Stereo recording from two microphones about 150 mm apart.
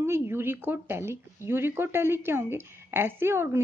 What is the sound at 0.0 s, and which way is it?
Speech, 15° right (ahead or behind).